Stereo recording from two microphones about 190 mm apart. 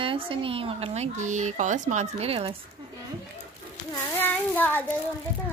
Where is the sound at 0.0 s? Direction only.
30° right (ahead or behind).